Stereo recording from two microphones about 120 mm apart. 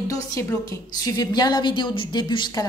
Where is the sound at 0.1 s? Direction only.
30° left (ahead or behind).